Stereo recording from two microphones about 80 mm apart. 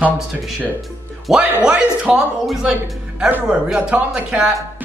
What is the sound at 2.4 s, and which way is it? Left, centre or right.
A man's voice, centre.